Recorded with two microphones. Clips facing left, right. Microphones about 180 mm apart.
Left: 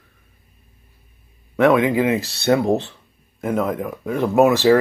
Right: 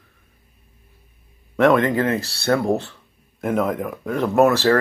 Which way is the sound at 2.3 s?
15° left (ahead or behind).